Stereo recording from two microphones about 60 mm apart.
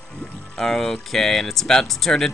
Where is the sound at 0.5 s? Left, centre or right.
Centre.